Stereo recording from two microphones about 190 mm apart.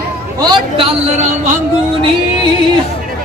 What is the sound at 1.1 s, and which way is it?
Speech, 40° right (ahead or behind).